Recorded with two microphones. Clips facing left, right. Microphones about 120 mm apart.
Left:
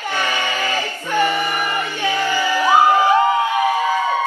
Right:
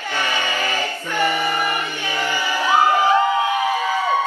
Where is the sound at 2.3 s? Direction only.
15° right (ahead or behind).